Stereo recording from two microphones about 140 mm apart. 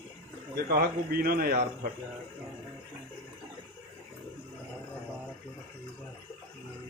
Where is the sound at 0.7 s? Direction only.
90° right.